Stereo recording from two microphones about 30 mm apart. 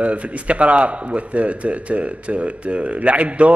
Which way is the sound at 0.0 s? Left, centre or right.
Right.